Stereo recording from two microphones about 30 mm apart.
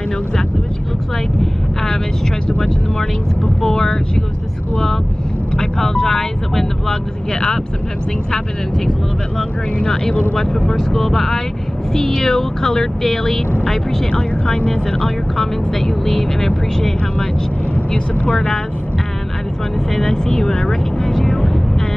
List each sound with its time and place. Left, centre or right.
3.6 s speech: centre
5.6 s speech: centre
6.9 s speech: left
10.3 s speech: centre
19.9 s speech: centre
21.1 s vehicle: centre